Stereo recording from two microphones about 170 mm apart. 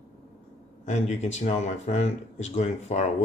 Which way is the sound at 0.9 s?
45° left (ahead or behind).